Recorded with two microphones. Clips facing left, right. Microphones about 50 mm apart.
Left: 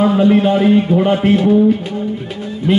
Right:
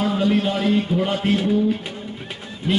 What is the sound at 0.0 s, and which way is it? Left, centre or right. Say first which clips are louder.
A man's voice: left 8 dB; left.